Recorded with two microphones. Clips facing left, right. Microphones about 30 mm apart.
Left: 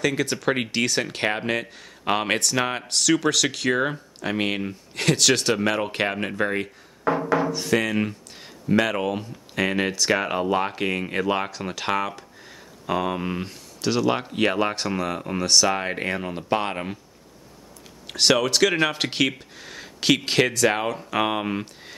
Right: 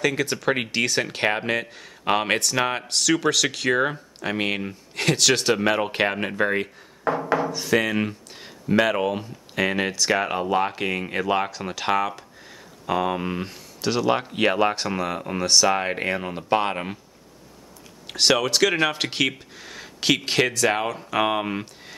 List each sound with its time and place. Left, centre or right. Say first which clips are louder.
0.0 s speech: even; centre
7.3 s a sound: even; centre
8.8 s speech: right 2 dB; centre
18.0 s speech: even; centre